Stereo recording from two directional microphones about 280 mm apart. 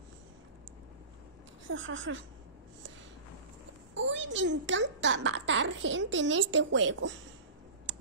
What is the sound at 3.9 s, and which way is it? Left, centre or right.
A child's voice, right.